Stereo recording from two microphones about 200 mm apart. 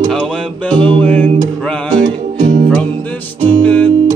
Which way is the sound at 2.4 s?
40° right (ahead or behind).